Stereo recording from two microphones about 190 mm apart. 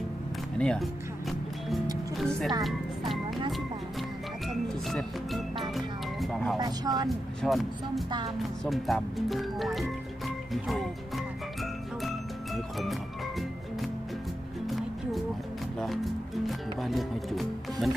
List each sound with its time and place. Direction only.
0.6 s music: centre (ahead or behind)
2.1 s speech: centre (ahead or behind)
4.8 s speech: centre (ahead or behind)
6.6 s speech: 20° right (ahead or behind)
7.4 s speech: centre (ahead or behind)
16.4 s music: centre (ahead or behind)